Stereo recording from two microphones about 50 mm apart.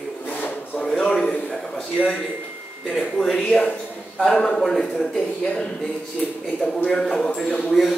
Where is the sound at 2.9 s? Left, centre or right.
Centre.